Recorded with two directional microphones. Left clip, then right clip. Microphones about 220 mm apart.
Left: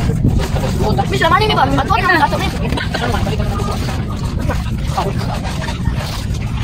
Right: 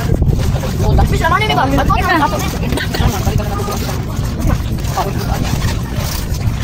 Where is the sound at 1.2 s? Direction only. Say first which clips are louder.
Left 1 dB; 40° left (ahead or behind).